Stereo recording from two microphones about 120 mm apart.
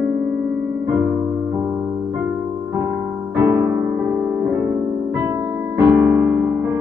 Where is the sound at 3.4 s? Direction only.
20° right (ahead or behind).